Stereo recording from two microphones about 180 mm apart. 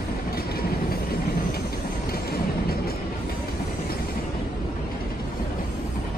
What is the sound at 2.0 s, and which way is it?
Train, 60° left (ahead or behind).